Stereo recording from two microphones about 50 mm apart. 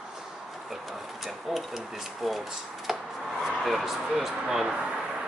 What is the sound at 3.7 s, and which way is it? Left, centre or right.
Speech, centre.